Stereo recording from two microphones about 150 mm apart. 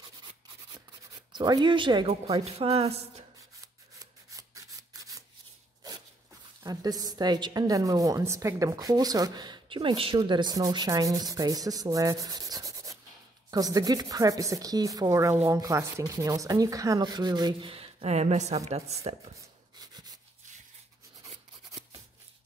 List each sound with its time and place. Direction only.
1.3 s a woman's voice: 30° right (ahead or behind)
3.6 s scissors: 25° right (ahead or behind)
6.6 s a woman's voice: 25° right (ahead or behind); by 19.3 s 45° right (ahead or behind)